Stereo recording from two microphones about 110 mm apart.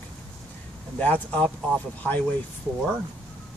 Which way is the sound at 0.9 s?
10° left (ahead or behind).